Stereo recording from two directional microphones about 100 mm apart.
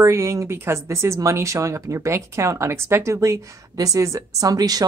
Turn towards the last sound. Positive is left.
turn(degrees=-40)  # may be behind; listen again after turning